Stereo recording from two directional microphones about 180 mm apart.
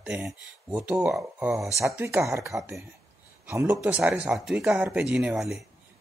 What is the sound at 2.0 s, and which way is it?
Speech, 15° right (ahead or behind).